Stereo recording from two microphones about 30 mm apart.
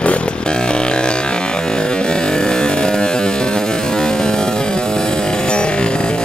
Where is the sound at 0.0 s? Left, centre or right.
Left.